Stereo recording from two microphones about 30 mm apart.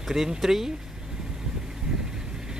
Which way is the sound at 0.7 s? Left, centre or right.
Right.